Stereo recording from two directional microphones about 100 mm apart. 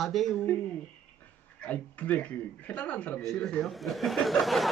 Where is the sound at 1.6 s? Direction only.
15° left (ahead or behind).